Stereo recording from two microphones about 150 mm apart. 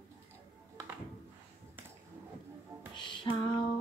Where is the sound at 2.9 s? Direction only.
30° left (ahead or behind).